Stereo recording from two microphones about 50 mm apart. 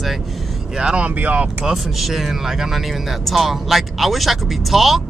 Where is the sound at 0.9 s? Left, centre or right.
Right.